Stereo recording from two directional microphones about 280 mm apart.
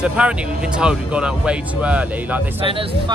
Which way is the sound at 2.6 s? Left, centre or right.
Centre.